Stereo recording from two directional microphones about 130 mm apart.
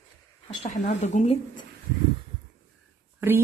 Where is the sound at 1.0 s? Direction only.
60° left (ahead or behind).